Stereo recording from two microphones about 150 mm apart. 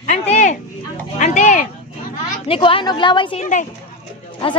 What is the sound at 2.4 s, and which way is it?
Speech, 35° left (ahead or behind).